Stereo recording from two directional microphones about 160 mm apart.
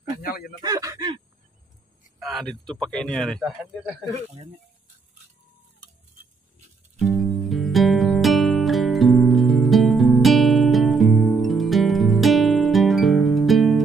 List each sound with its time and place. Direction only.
0.1 s a sound: 65° left (ahead or behind)
0.6 s speech: 25° right (ahead or behind)
2.1 s speech: centre (ahead or behind)
7.0 s music: centre (ahead or behind)